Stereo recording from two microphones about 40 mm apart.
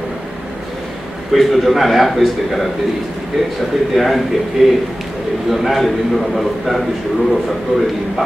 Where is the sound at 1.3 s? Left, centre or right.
Centre.